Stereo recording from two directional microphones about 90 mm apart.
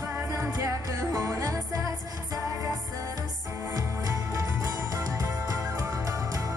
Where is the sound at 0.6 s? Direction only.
40° right (ahead or behind).